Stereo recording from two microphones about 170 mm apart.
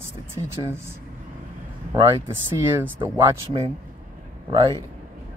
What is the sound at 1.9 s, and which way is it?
Speech, 30° right (ahead or behind).